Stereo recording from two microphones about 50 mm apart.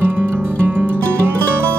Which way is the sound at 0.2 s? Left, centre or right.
Right.